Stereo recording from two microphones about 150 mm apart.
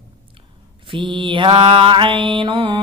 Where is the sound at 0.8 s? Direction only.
35° right (ahead or behind).